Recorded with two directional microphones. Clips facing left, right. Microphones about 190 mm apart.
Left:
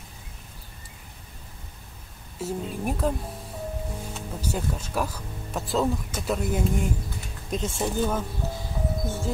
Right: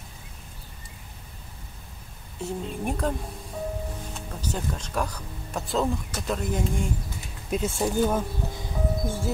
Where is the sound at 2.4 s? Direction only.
Centre (ahead or behind).